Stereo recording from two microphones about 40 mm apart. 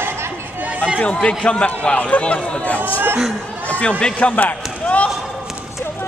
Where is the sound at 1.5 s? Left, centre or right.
Left.